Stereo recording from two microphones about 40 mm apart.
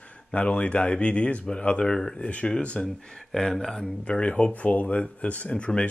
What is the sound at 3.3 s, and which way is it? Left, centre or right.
Speech, centre.